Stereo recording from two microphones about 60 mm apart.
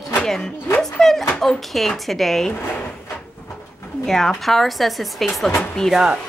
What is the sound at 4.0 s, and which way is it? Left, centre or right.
Speech, centre.